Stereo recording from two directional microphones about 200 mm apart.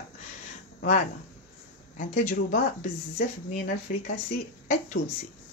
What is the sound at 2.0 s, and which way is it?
Speech, 40° left (ahead or behind).